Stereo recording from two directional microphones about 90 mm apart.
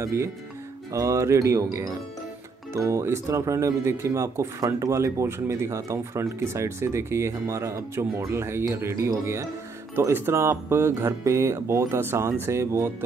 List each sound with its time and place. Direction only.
0.0 s speech: 30° right (ahead or behind)